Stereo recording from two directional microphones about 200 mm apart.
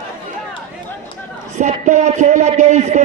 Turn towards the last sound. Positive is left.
turn(degrees=-35)  # may be behind; listen again after turning